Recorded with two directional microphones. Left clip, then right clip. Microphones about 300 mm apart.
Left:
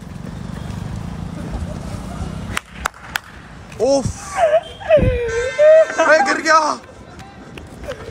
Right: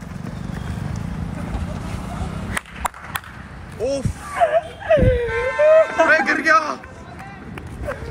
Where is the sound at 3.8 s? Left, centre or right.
Left.